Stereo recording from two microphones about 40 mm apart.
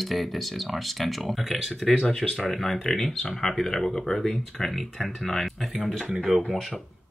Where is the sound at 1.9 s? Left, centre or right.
Centre.